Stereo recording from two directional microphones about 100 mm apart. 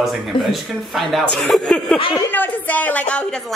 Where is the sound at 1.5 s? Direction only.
5° left (ahead or behind).